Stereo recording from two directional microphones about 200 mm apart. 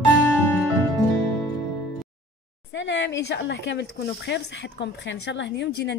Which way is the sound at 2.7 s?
65° left (ahead or behind).